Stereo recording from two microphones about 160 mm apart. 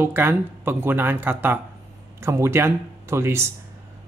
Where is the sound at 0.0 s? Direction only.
15° right (ahead or behind).